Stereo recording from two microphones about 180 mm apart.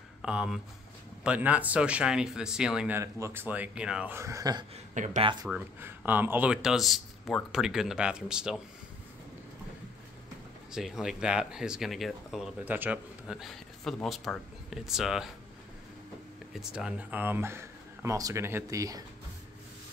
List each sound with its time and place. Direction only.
0.2 s speech: 5° right (ahead or behind)
3.0 s speech: 15° right (ahead or behind)
4.9 s speech: 45° right (ahead or behind)
5.5 s speech: 10° right (ahead or behind)
10.7 s speech: 5° right (ahead or behind)
16.5 s speech: 5° right (ahead or behind)